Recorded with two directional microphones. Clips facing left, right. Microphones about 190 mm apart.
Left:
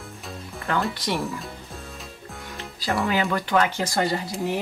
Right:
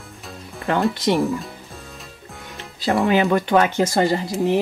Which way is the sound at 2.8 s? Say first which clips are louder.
Right 6 dB; 20° right (ahead or behind).